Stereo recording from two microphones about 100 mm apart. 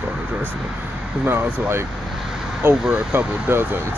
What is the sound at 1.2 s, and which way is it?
Speech, 25° right (ahead or behind).